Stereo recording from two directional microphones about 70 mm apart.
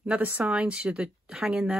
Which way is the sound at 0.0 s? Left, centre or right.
Centre.